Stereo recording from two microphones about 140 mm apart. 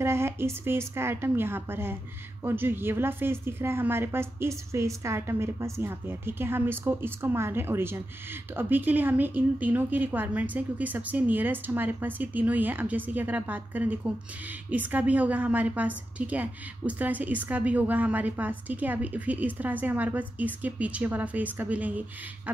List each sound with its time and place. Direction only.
0.0 s a woman's voice: 20° right (ahead or behind)